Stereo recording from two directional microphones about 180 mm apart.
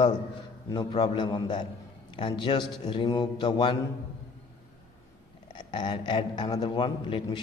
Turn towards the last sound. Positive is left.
turn(degrees=25)  # may be behind; listen again after turning